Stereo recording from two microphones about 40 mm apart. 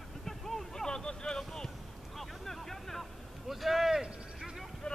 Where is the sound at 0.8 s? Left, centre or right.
Centre.